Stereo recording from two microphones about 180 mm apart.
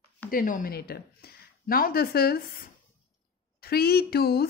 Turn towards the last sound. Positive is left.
turn(degrees=60)  # may be behind; listen again after turning